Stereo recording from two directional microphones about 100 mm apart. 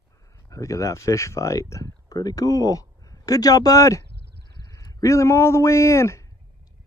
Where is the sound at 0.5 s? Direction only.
30° left (ahead or behind).